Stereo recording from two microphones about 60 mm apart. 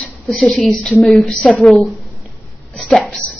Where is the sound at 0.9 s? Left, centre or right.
Centre.